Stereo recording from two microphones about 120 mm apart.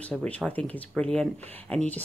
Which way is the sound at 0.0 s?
10° left (ahead or behind).